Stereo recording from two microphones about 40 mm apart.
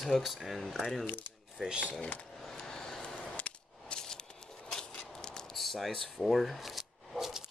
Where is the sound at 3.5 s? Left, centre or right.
Left.